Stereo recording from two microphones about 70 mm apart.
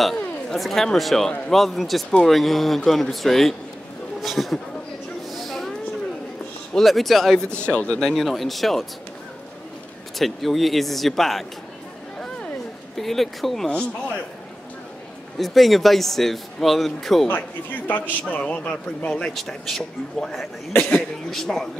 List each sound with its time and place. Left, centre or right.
0.0 s speech: centre
2.0 s speech: centre
2.3 s speech: centre
5.3 s a sound: centre
6.7 s speech: centre
8.1 s speech: centre
10.1 s speech: centre
12.9 s speech: centre
13.7 s speech: centre
15.3 s speech: centre
17.8 s a man's voice: left; by 20.4 s centre
20.7 s speech: left
21.3 s speech: centre